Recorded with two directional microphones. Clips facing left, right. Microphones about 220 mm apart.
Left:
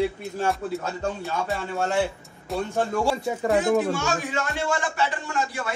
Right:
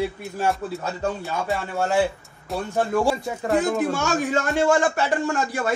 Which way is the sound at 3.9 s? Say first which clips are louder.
Right 4 dB; 45° right (ahead or behind).